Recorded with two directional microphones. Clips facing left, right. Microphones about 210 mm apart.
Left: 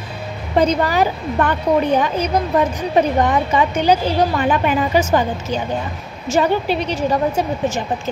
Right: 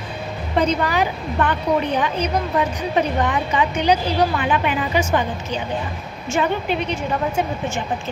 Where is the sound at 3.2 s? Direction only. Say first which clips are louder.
Left 4 dB; 40° left (ahead or behind).